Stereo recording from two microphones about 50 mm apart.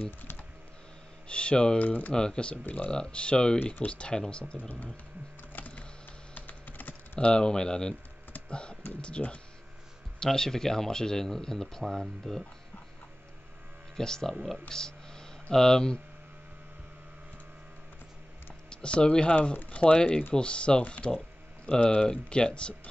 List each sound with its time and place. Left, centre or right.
1.3 s speech: left
1.8 s speech: left
2.1 s speech: centre
5.5 s a sound: left
6.3 s computer keyboard: left
7.2 s speech: centre
10.2 s speech: centre
13.9 s speech: centre
14.7 s a sound: centre
15.5 s speech: centre
18.7 s speech: centre